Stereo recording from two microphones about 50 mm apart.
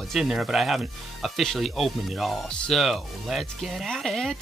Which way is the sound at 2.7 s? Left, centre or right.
Centre.